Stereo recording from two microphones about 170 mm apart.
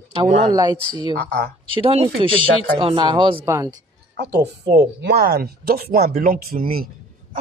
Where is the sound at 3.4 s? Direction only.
15° right (ahead or behind).